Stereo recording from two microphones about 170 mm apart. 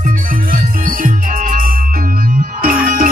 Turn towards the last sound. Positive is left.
turn(degrees=-55)  # may be behind; listen again after turning